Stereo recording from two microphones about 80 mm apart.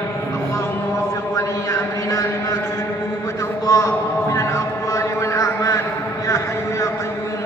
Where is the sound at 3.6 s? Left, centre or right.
Left.